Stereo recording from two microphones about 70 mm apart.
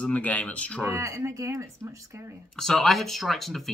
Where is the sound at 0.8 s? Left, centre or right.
Right.